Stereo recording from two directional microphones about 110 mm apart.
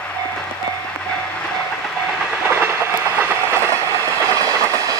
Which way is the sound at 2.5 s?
20° right (ahead or behind).